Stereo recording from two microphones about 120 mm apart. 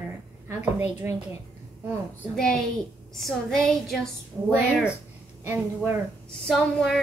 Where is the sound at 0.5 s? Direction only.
20° right (ahead or behind).